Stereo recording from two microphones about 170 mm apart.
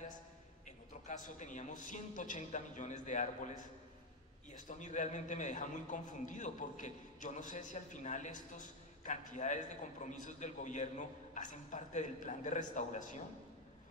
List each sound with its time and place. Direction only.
0.7 s a man's voice: 50° left (ahead or behind)